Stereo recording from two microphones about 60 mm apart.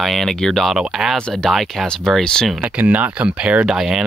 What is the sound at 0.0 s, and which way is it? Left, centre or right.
Speech, centre.